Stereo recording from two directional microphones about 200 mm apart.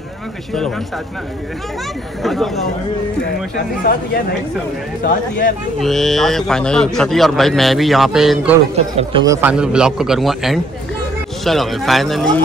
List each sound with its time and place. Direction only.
2.2 s a man's voice: centre (ahead or behind)
3.5 s speech: 45° left (ahead or behind)
5.8 s a man's voice: centre (ahead or behind)
8.7 s speech: 30° right (ahead or behind)
9.2 s a man's voice: 15° right (ahead or behind)